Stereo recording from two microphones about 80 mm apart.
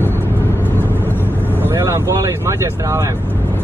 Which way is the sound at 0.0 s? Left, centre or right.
Left.